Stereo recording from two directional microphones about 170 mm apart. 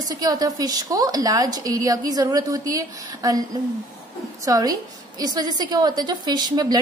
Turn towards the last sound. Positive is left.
turn(degrees=-25)  # may be behind; listen again after turning